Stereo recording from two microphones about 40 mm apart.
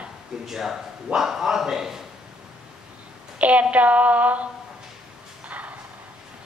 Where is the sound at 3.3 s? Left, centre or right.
Right.